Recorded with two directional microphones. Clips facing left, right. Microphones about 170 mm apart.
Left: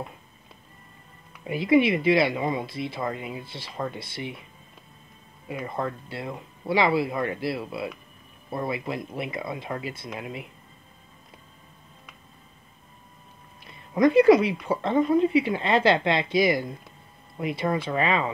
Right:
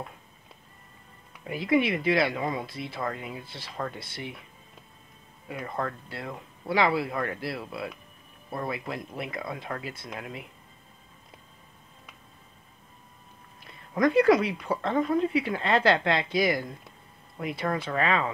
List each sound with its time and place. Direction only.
1.4 s speech: 5° left (ahead or behind)
5.5 s speech: 10° left (ahead or behind)
13.9 s speech: 5° left (ahead or behind)
15.1 s speech: 5° left (ahead or behind)